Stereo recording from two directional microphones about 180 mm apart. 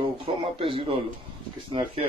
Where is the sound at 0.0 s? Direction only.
30° right (ahead or behind).